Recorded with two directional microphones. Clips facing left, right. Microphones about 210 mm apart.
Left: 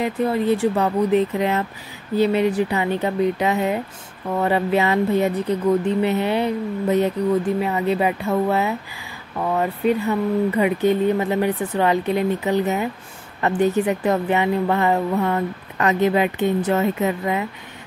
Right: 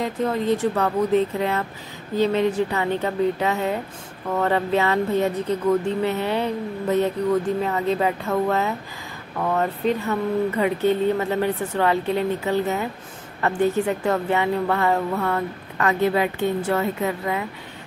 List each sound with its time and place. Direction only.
0.0 s a woman's voice: 10° left (ahead or behind)